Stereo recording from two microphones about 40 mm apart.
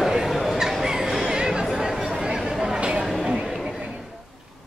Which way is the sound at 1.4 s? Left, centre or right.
Centre.